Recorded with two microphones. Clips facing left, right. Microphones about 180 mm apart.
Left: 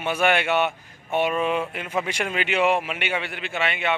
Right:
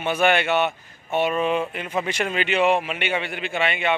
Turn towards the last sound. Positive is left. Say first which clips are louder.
# right 2 dB
turn(degrees=0)  # may be behind; listen again after turning